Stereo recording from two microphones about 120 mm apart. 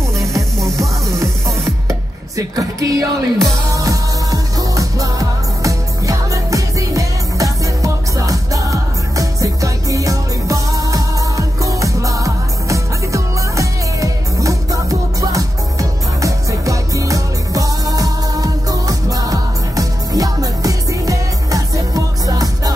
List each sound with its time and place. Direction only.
0.7 s music: 25° right (ahead or behind)